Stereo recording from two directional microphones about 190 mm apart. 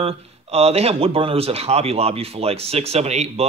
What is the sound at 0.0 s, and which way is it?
Speech, 30° right (ahead or behind).